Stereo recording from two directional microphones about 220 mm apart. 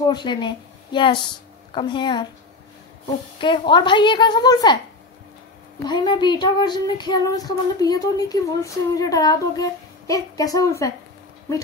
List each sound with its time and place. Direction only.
0.0 s a woman's voice: 20° left (ahead or behind)
3.3 s a woman's voice: 20° left (ahead or behind)
5.9 s child singing: 20° left (ahead or behind)